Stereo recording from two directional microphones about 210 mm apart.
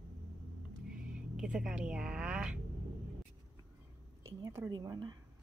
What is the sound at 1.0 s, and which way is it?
Speech, 5° right (ahead or behind).